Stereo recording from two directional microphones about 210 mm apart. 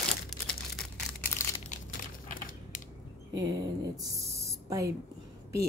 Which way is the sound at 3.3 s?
60° right (ahead or behind).